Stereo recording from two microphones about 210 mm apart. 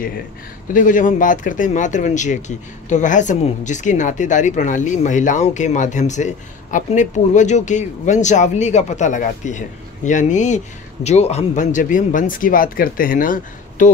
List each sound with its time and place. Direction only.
0.7 s speech: 40° left (ahead or behind)